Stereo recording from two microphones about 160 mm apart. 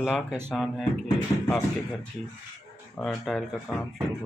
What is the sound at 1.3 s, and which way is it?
Speech, 20° left (ahead or behind).